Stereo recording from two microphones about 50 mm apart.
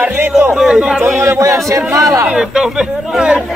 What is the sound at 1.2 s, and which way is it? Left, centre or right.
Speech, right.